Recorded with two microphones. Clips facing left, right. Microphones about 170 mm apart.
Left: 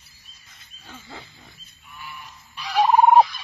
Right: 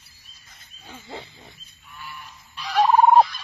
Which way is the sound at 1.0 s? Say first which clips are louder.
Right 6 dB; 25° right (ahead or behind).